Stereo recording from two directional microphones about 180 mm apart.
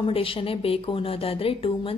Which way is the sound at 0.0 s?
30° left (ahead or behind).